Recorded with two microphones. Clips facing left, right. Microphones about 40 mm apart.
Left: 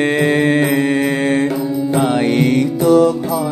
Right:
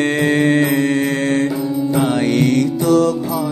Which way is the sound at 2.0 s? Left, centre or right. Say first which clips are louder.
Left 1 dB; centre.